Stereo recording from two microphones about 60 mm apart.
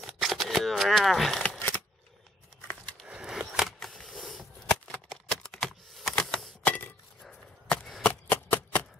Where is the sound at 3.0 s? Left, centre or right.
Centre.